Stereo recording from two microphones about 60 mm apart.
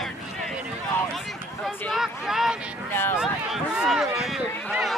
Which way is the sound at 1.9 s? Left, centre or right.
Centre.